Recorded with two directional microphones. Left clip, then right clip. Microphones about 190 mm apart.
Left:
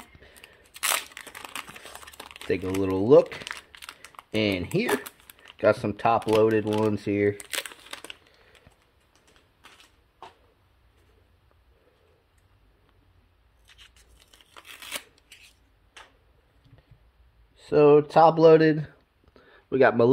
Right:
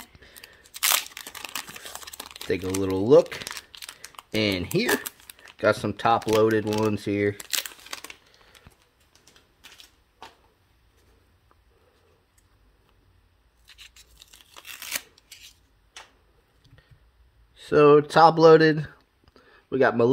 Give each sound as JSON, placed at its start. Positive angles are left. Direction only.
{"t": 0.0, "sound": "a sound", "side_deg": -5}
{"t": 3.0, "sound": "speech", "side_deg": -10}
{"t": 3.9, "sound": "crumpling", "side_deg": -5}
{"t": 5.4, "sound": "speech", "side_deg": -15}
{"t": 7.4, "sound": "crumpling", "side_deg": -5}
{"t": 13.7, "sound": "scissors", "side_deg": -15}
{"t": 14.4, "sound": "tearing", "side_deg": -5}
{"t": 17.6, "sound": "speech", "side_deg": -25}
{"t": 19.3, "sound": "a sound", "side_deg": -5}